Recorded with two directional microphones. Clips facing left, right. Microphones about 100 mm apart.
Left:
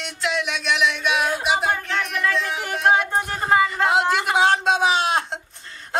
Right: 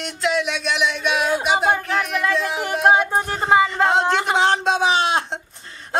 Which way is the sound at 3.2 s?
5° right (ahead or behind).